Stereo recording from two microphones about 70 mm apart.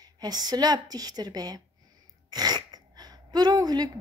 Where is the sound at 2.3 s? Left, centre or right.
Right.